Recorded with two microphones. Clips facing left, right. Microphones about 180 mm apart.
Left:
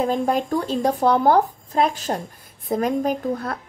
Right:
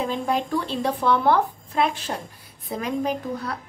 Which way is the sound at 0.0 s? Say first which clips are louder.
Left 4 dB; 45° left (ahead or behind).